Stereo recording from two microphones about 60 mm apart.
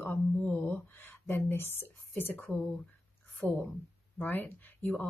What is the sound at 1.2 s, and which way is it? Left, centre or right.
A woman's voice, left.